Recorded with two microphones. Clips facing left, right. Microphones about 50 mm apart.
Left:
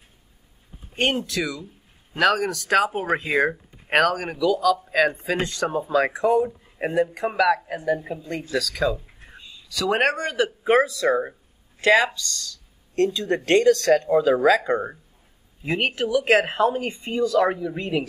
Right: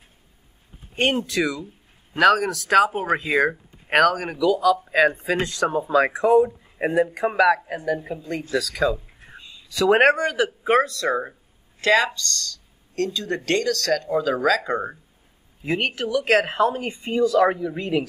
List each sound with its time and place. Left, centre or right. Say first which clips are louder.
0.9 s speech: right 2 dB; centre
7.7 s speech: left 1 dB; centre
9.7 s speech: right 5 dB; centre
10.1 s speech: right 2 dB; centre
12.9 s speech: left 4 dB; centre
14.7 s speech: left 2 dB; centre
16.8 s speech: right 2 dB; centre